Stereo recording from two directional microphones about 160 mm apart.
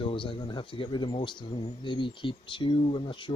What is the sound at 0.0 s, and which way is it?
Speech, 30° left (ahead or behind).